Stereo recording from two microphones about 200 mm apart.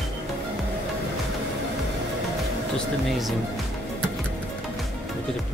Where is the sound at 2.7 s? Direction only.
Centre (ahead or behind).